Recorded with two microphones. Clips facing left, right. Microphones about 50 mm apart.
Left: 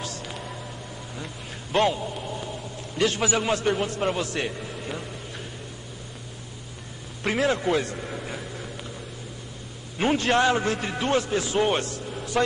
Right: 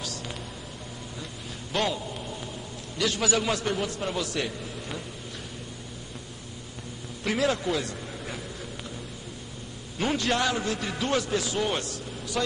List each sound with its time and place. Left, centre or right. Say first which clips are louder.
1.2 s a sound: left 2 dB; left
3.0 s a man's voice: left 3 dB; left
3.8 s a man's voice: left 4 dB; left
4.7 s a sound: left 3 dB; centre
7.2 s speech: left 3 dB; left
9.9 s a man's voice: left 4 dB; left